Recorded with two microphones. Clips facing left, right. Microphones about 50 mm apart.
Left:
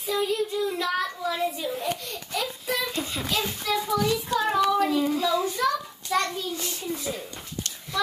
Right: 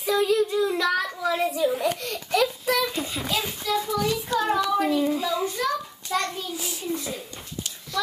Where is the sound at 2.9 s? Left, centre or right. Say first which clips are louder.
Right 1 dB; centre.